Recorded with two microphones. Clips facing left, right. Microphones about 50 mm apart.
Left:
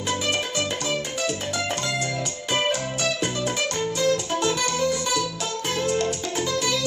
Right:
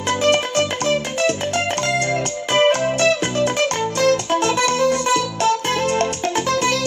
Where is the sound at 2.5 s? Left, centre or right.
Right.